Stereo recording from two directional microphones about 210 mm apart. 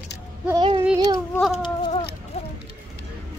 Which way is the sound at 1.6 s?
25° left (ahead or behind).